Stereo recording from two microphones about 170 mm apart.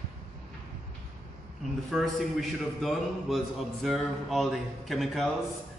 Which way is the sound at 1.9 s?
Centre (ahead or behind).